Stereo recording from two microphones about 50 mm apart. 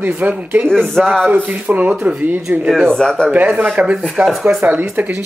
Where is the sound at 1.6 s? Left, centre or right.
Right.